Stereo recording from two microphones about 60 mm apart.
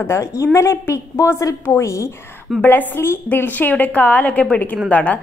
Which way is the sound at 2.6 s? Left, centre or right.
Left.